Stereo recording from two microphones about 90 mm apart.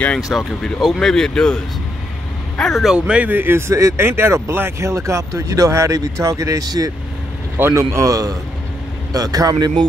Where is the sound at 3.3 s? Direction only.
25° right (ahead or behind).